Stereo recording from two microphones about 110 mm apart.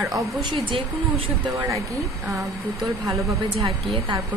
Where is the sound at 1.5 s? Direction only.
25° right (ahead or behind).